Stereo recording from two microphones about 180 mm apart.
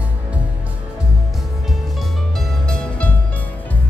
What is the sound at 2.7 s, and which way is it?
Music, 5° left (ahead or behind).